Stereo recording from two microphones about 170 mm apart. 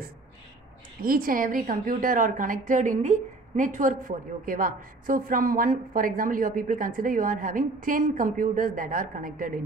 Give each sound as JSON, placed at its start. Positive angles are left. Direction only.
{"t": 1.0, "sound": "a woman's voice", "side_deg": -60}